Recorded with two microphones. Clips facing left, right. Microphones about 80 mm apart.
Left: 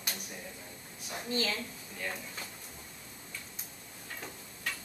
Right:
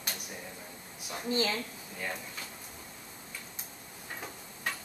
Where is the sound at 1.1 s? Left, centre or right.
Right.